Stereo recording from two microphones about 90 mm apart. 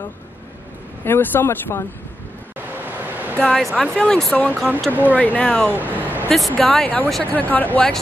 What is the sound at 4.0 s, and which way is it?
Speech, 10° left (ahead or behind).